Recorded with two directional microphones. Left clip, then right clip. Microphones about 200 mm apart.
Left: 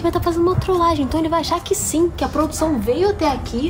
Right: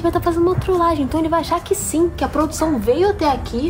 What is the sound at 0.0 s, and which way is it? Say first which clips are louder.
Speech: right 1 dB; 5° left (ahead or behind).